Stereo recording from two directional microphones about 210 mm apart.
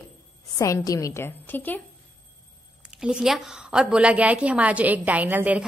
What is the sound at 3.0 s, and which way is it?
A woman's voice, 5° right (ahead or behind).